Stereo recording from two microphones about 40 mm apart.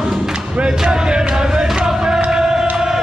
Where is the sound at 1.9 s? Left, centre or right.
Centre.